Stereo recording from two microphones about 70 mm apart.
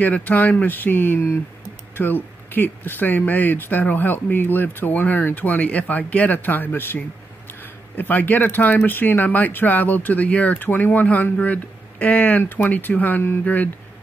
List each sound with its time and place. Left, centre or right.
0.0 s speech: left
8.0 s speech: left